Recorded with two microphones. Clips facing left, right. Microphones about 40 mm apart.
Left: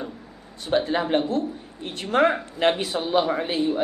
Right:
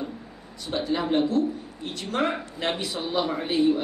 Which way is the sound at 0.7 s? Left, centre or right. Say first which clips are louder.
Left 4 dB; left.